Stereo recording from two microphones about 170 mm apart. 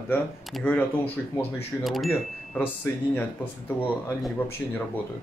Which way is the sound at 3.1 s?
10° left (ahead or behind).